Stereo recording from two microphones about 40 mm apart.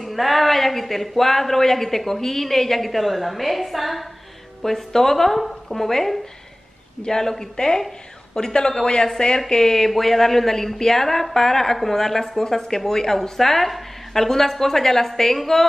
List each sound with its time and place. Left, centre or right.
0.0 s a woman's voice: centre